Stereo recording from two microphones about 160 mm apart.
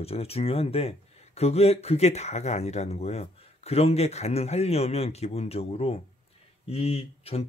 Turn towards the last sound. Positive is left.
turn(degrees=40)  # may be behind; listen again after turning